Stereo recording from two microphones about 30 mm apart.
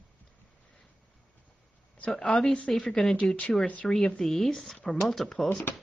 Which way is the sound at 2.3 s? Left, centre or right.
Left.